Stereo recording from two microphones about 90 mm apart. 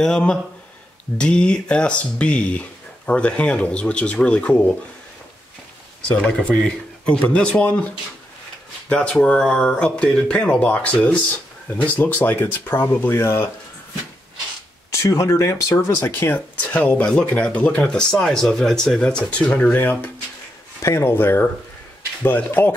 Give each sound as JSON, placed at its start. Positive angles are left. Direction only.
{"t": 0.0, "sound": "speech", "side_deg": 10}
{"t": 6.0, "sound": "speech", "side_deg": 10}
{"t": 14.9, "sound": "speech", "side_deg": 35}